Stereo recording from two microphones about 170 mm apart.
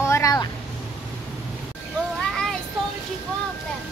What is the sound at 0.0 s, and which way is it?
Vehicle, 15° left (ahead or behind).